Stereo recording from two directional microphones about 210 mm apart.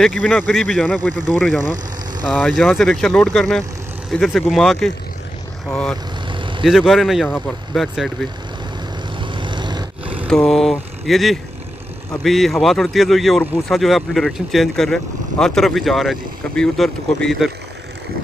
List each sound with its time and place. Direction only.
0.0 s speech: 5° left (ahead or behind)
6.3 s vehicle: 25° right (ahead or behind)
6.6 s speech: centre (ahead or behind)
9.2 s vehicle: 25° right (ahead or behind)
10.1 s speech: centre (ahead or behind)